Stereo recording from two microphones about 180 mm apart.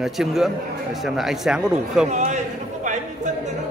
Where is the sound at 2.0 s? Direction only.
40° right (ahead or behind).